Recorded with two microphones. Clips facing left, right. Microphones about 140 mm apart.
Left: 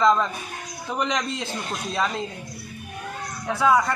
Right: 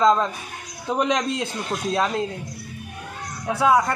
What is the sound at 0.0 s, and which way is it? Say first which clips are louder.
Speech: right 2 dB; 15° right (ahead or behind).